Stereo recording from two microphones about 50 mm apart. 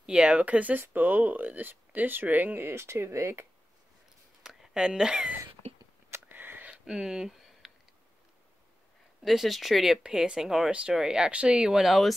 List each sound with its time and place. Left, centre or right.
0.0 s speech: centre; by 2.6 s right
2.6 s speech: right
4.4 s a sound: centre
6.2 s sniff: right
6.7 s speech: centre
7.6 s a sound: centre
9.2 s speech: centre
10.0 s speech: centre
11.7 s speech: centre